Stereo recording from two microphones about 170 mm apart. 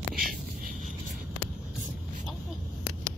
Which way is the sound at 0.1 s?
60° right (ahead or behind).